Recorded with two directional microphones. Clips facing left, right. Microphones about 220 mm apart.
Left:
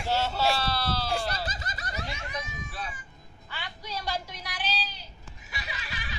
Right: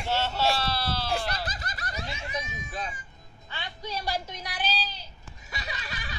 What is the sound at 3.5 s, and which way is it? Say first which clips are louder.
Music: right 3 dB; 20° right (ahead or behind).